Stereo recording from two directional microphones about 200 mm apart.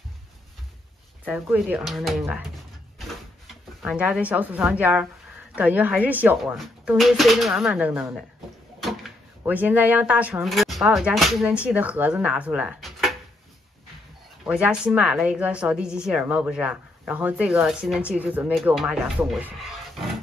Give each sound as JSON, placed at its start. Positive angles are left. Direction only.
{"t": 1.2, "sound": "a woman's voice", "side_deg": -5}
{"t": 3.8, "sound": "a woman's voice", "side_deg": -5}
{"t": 9.4, "sound": "a woman's voice", "side_deg": -10}
{"t": 14.4, "sound": "a woman's voice", "side_deg": -5}